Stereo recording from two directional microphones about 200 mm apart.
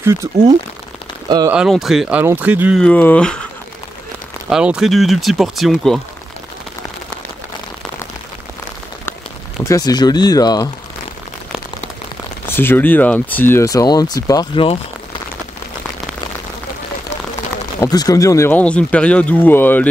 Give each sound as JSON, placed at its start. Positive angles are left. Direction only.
{"t": 0.0, "sound": "speech", "side_deg": -15}
{"t": 1.5, "sound": "speech", "side_deg": -5}
{"t": 2.8, "sound": "speech", "side_deg": 10}
{"t": 4.5, "sound": "speech", "side_deg": -5}
{"t": 9.6, "sound": "speech", "side_deg": 15}
{"t": 12.4, "sound": "speech", "side_deg": 10}
{"t": 17.7, "sound": "speech", "side_deg": 20}